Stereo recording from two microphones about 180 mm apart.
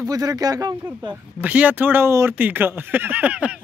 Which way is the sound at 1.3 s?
10° right (ahead or behind).